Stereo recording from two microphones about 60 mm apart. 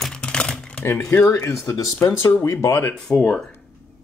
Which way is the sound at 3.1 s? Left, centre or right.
Left.